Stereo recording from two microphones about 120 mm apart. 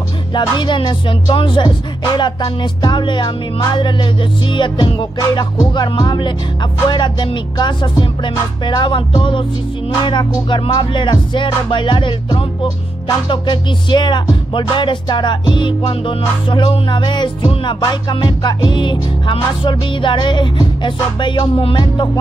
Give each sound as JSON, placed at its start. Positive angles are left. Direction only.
{"t": 0.3, "sound": "music", "side_deg": 40}
{"t": 5.2, "sound": "music", "side_deg": 30}